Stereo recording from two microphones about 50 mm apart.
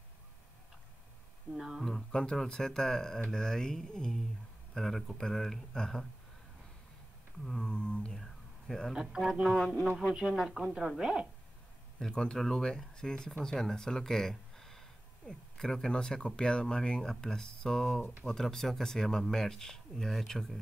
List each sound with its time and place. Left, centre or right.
1.8 s speech: centre
7.4 s speech: centre
8.2 s a sound: centre
8.9 s a woman's voice: centre
9.3 s music: centre
10.1 s a woman's voice: centre
12.0 s speech: centre